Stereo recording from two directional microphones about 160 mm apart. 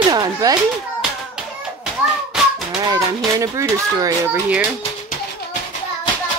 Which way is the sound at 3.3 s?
20° right (ahead or behind).